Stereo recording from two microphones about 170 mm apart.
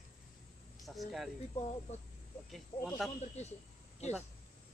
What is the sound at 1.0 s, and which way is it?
Speech, centre (ahead or behind).